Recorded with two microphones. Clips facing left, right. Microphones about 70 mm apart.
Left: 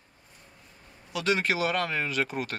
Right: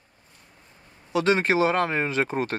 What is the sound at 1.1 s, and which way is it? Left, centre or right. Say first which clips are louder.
Speech: right 6 dB; right.